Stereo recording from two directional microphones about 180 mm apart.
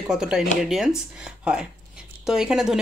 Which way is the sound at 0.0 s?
5° right (ahead or behind).